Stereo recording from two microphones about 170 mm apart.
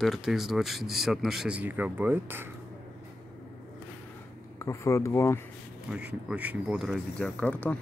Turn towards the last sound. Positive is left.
turn(degrees=10)  # may be behind; listen again after turning